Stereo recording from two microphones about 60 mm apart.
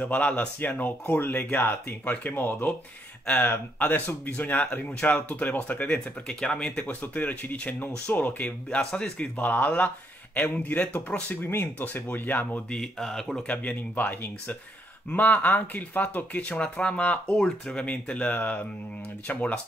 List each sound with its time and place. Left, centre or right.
0.0 s speech: left
6.2 s speech: centre
7.0 s speech: left
8.6 s speech: centre
9.4 s speech: left
11.5 s speech: left
12.6 s speech: centre
13.4 s speech: left